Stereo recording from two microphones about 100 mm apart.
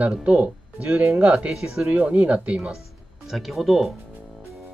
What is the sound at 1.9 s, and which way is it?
Speech, 15° right (ahead or behind).